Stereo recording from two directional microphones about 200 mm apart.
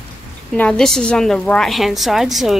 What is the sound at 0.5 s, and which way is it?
A woman's voice, 5° left (ahead or behind).